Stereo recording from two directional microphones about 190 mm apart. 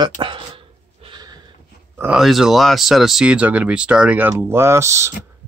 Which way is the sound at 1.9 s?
5° right (ahead or behind).